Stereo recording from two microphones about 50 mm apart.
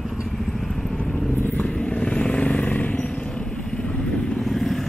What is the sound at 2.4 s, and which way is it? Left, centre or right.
Vehicle, left.